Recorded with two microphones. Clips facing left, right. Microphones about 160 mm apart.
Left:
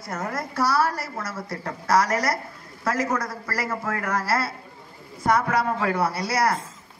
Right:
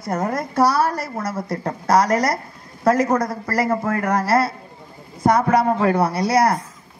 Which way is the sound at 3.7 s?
35° right (ahead or behind).